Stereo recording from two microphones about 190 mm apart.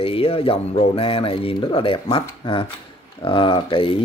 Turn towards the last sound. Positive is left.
turn(degrees=30)  # may be behind; listen again after turning